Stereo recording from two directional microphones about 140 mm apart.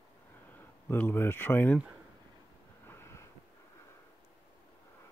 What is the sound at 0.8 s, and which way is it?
Speech, 15° left (ahead or behind).